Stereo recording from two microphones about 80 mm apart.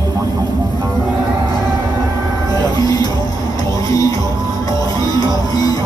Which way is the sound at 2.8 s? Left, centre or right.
Left.